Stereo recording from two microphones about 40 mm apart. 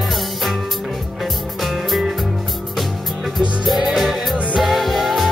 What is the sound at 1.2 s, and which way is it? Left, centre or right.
Music, centre.